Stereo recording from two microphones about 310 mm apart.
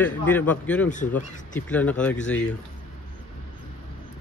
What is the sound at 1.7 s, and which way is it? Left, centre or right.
Speech, centre.